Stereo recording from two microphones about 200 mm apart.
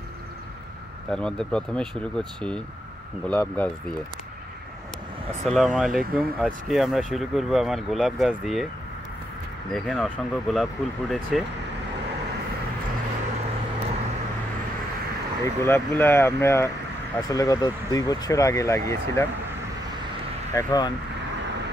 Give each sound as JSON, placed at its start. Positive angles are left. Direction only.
{"t": 1.1, "sound": "speech", "side_deg": 5}
{"t": 5.4, "sound": "speech", "side_deg": 0}
{"t": 9.7, "sound": "speech", "side_deg": 0}
{"t": 15.4, "sound": "speech", "side_deg": 10}
{"t": 20.5, "sound": "speech", "side_deg": 20}